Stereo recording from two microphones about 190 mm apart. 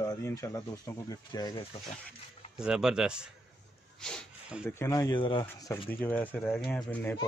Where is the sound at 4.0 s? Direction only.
5° left (ahead or behind).